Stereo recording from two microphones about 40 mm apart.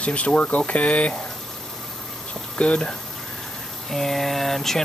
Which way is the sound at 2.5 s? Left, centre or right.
Left.